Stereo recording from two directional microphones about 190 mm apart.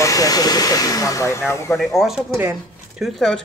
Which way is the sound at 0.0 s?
20° left (ahead or behind).